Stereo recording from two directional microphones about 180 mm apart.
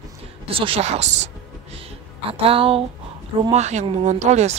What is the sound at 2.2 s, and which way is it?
Speech, 30° right (ahead or behind).